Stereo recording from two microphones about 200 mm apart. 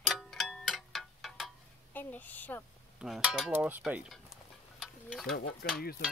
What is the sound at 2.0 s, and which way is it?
Speech, 10° left (ahead or behind).